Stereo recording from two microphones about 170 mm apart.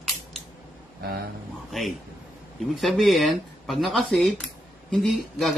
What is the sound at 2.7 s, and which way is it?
Speech, centre (ahead or behind).